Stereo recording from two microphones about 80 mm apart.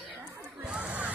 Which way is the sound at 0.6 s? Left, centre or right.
Centre.